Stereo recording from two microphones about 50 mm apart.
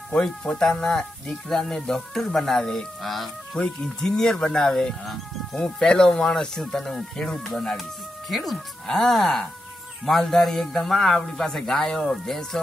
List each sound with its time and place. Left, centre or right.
0.1 s speech: centre
3.5 s speech: centre
5.0 s speech: centre
5.6 s speech: centre